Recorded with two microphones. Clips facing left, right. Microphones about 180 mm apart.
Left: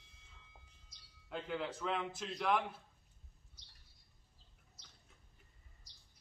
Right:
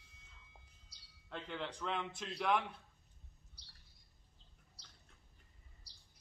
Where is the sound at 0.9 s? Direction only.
35° right (ahead or behind).